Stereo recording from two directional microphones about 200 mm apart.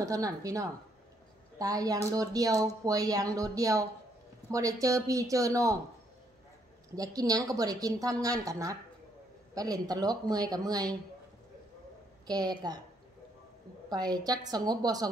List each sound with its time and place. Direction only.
0.0 s speech: 15° right (ahead or behind)
7.0 s speech: 20° right (ahead or behind)
12.3 s speech: 20° right (ahead or behind)
13.8 s speech: 20° right (ahead or behind)